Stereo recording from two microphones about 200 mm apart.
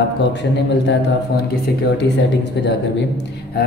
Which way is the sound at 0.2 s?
60° left (ahead or behind).